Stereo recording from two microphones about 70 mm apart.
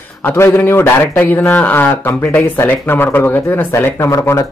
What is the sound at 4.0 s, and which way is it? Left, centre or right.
Speech, left.